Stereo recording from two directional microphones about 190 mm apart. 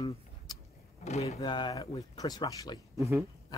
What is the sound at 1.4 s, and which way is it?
Speech, 25° left (ahead or behind).